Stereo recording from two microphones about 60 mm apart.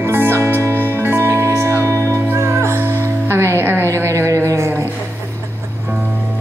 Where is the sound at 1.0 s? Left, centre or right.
Right.